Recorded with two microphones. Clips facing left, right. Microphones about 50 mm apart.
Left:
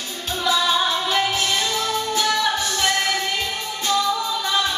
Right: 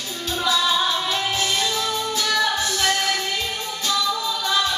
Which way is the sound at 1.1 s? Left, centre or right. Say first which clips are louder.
Left 2 dB; left.